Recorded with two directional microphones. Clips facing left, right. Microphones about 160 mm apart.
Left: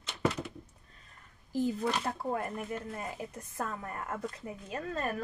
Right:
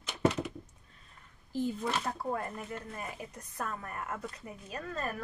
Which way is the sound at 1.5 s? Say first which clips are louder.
Left 2 dB; 40° left (ahead or behind).